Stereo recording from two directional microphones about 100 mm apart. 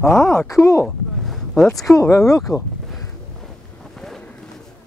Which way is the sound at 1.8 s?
30° left (ahead or behind).